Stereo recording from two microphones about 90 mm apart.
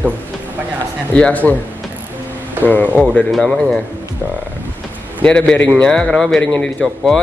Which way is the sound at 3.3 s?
Centre (ahead or behind).